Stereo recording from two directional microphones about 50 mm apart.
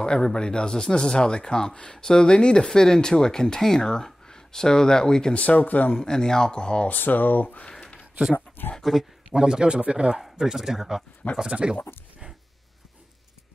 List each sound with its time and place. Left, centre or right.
0.0 s speech: centre
5.4 s speech: left
5.9 s speech: centre
6.9 s speech: left
8.7 s speech: centre
9.3 s speech: centre
11.4 s speech: right